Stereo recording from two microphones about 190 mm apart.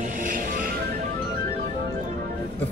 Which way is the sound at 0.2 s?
45° right (ahead or behind).